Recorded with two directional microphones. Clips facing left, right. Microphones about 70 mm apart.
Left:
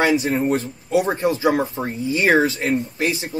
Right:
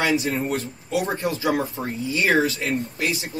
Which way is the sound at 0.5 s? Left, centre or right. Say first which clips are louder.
Left 6 dB; left.